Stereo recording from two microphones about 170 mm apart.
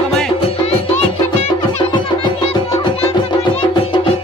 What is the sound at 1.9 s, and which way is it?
Music, 25° left (ahead or behind).